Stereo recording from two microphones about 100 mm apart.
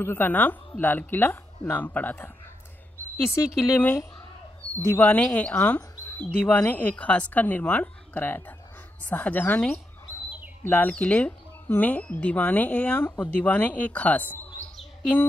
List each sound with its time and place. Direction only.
0.0 s speech: 20° left (ahead or behind)
3.3 s speech: 30° left (ahead or behind)
10.9 s speech: 15° left (ahead or behind)